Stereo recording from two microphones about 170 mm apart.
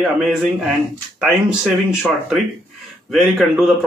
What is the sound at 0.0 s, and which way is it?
A man's voice, centre (ahead or behind).